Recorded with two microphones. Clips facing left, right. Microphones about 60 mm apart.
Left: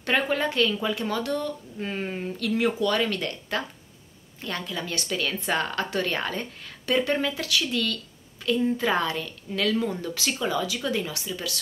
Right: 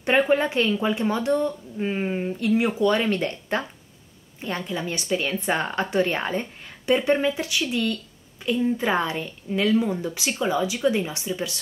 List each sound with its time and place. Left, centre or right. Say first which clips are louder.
0.0 s speech: right 5 dB; right